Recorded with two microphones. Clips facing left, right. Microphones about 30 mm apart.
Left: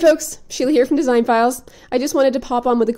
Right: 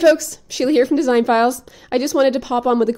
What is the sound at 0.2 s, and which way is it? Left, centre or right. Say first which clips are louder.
Speech: even; centre.